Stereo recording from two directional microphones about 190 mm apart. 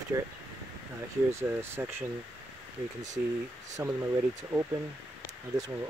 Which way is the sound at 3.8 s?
10° right (ahead or behind).